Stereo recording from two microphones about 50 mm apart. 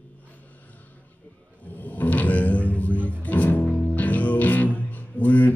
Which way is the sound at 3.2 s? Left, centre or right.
Left.